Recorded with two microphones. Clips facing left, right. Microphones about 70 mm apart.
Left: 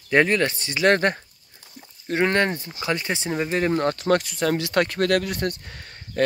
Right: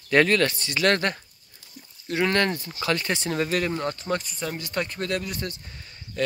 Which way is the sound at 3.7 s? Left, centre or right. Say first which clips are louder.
Left 7 dB; left.